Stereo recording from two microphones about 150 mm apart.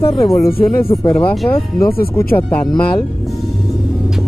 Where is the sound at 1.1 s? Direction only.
10° left (ahead or behind).